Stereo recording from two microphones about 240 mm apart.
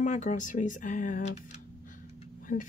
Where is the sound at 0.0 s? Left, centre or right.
Left.